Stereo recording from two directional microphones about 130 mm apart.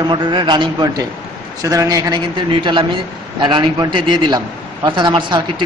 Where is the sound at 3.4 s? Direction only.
35° right (ahead or behind).